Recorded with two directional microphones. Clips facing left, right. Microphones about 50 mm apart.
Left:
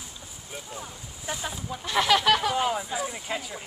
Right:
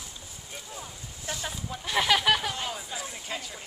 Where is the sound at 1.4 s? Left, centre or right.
Centre.